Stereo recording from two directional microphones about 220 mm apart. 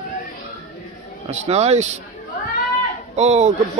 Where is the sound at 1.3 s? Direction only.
30° right (ahead or behind).